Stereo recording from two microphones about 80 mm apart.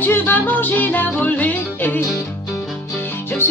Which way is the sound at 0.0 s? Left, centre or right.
Left.